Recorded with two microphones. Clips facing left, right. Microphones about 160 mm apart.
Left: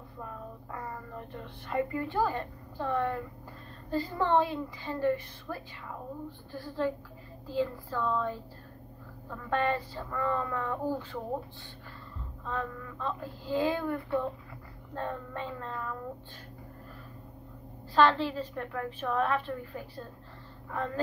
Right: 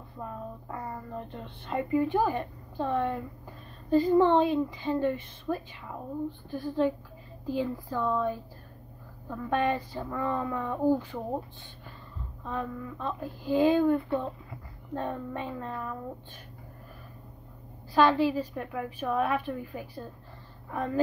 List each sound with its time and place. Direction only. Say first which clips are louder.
0.7 s a woman's voice: right 1 dB; 20° right (ahead or behind)
9.5 s a woman's voice: right 2 dB; 15° right (ahead or behind)
12.4 s a woman's voice: right 2 dB; 15° right (ahead or behind)
17.9 s a woman's voice: right 2 dB; 10° right (ahead or behind)